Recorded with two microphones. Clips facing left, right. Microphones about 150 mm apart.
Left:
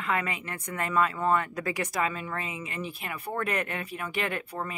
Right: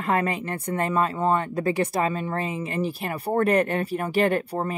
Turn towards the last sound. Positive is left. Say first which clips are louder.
# right 10 dB
turn(degrees=-35)  # may be behind; listen again after turning